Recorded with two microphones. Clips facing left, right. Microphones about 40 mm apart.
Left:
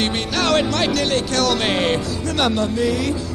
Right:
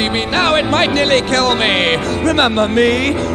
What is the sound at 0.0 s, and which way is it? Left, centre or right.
Speech, right.